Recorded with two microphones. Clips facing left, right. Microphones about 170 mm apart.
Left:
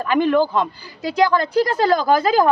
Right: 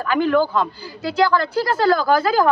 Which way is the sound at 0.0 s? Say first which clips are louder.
Left 1 dB; 20° left (ahead or behind).